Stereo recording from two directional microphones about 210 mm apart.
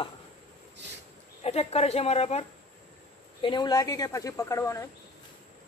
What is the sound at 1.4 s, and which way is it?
A woman's voice, 30° left (ahead or behind).